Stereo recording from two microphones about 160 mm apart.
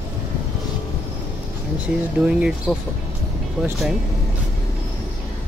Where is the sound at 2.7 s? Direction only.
5° left (ahead or behind).